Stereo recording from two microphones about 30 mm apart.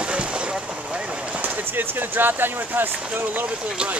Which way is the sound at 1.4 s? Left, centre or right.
Right.